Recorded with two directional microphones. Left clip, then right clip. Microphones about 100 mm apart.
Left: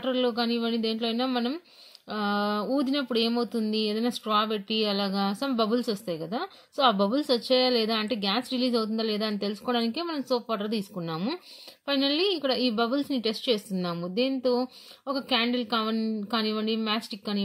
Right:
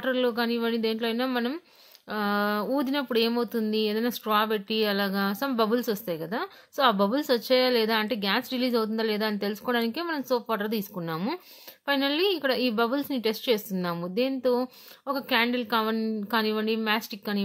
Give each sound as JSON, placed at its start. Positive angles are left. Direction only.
{"t": 0.0, "sound": "speech", "side_deg": 15}
{"t": 15.0, "sound": "speech", "side_deg": 15}